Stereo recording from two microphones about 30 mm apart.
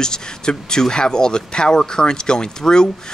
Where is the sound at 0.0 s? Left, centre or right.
Left.